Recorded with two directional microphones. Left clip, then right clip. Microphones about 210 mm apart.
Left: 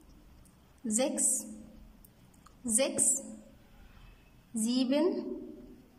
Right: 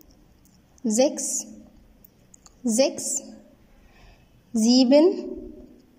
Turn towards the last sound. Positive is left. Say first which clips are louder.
# right 13 dB
turn(degrees=-20)  # may be behind; listen again after turning